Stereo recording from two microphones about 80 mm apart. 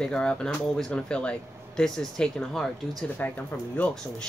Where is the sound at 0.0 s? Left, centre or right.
Centre.